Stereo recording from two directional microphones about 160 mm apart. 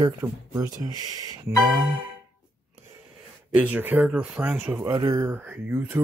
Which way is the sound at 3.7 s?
10° right (ahead or behind).